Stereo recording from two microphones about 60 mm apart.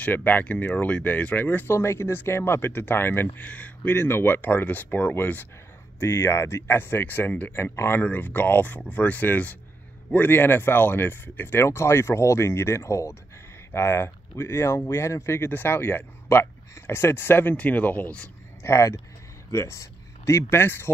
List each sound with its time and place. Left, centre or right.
0.0 s speech: left
1.8 s speech: left
3.3 s speech: left
3.9 s speech: left
5.9 s speech: left
7.5 s speech: left
8.0 s speech: left
17.6 s speech: left
18.6 s speech: left